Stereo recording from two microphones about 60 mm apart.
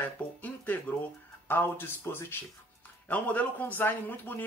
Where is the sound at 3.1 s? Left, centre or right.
Left.